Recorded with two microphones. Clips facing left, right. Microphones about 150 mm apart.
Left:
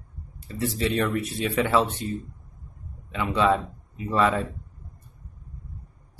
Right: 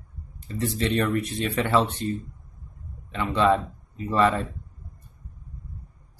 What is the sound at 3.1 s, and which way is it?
Speech, 5° left (ahead or behind).